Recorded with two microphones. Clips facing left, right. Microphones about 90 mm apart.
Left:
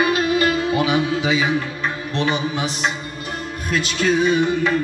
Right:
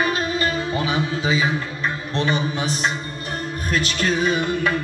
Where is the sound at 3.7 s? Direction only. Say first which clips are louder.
Left 3 dB; 50° right (ahead or behind).